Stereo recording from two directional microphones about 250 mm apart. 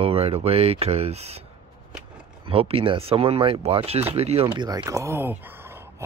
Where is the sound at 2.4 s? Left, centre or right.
Right.